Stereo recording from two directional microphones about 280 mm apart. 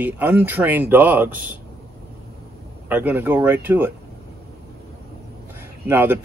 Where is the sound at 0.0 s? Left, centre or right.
Centre.